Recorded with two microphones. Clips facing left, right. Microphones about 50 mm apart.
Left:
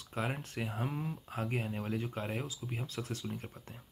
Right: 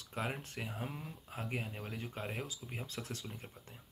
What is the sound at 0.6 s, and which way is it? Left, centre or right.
Speech, centre.